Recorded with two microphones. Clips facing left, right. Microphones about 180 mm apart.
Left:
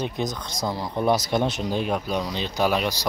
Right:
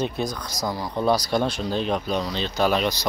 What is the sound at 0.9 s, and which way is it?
Speech, 20° left (ahead or behind).